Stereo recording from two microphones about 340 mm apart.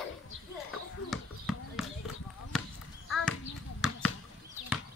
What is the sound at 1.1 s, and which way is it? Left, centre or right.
Basketball bounce, centre.